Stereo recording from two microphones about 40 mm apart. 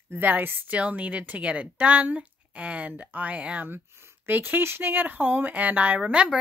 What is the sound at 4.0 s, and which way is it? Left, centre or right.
Speech, right.